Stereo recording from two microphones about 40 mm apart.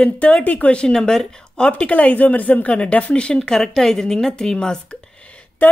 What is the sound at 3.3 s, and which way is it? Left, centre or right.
Speech, centre.